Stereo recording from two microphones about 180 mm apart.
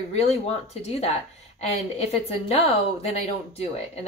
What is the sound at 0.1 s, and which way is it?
A woman's voice, 35° left (ahead or behind).